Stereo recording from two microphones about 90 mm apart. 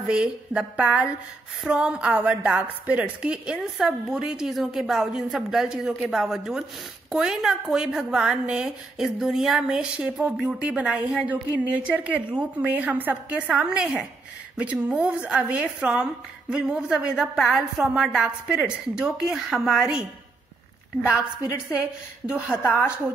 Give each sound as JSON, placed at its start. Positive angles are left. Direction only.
{"t": 0.1, "sound": "a woman's voice", "side_deg": -10}
{"t": 22.2, "sound": "speech", "side_deg": -15}
{"t": 22.6, "sound": "a woman's voice", "side_deg": 30}